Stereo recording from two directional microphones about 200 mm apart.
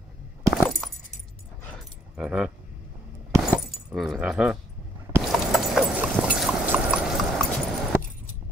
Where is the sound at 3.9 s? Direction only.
Centre (ahead or behind).